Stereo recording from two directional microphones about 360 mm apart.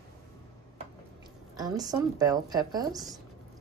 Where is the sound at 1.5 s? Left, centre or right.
Centre.